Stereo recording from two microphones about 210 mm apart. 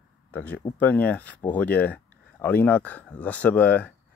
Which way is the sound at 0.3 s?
5° left (ahead or behind).